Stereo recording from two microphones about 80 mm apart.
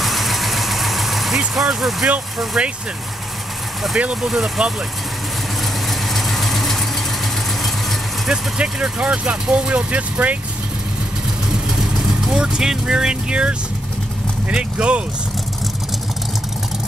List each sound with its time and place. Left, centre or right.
0.0 s vehicle: centre
1.5 s speech: centre
4.0 s speech: centre
5.9 s vehicle: centre
8.3 s speech: centre
11.7 s speech: centre